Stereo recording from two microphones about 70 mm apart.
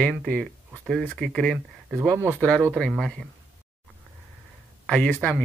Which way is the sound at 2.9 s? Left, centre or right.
Centre.